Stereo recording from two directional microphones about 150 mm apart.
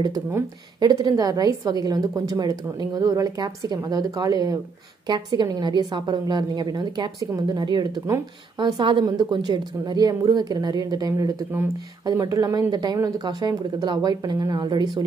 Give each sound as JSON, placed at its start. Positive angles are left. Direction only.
{"t": 0.0, "sound": "a woman's voice", "side_deg": -25}